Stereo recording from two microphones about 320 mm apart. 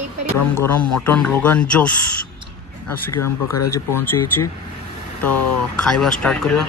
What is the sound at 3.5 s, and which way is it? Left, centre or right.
Speech, left.